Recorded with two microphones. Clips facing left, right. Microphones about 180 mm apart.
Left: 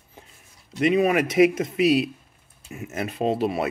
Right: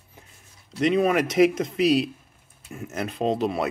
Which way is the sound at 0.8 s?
5° left (ahead or behind).